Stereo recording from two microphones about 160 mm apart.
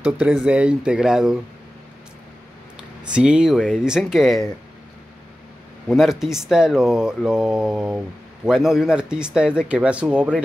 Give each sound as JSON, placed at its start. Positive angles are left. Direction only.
{"t": 0.0, "sound": "speech", "side_deg": -5}
{"t": 2.8, "sound": "speech", "side_deg": -5}
{"t": 5.9, "sound": "speech", "side_deg": 0}